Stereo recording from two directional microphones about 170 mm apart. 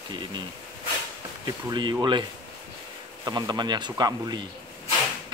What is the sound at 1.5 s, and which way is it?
Speech, 25° right (ahead or behind).